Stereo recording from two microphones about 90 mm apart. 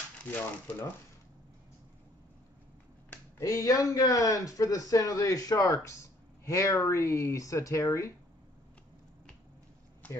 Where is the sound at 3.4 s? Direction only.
40° left (ahead or behind).